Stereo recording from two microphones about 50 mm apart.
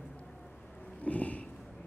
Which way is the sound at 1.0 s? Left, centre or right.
Left.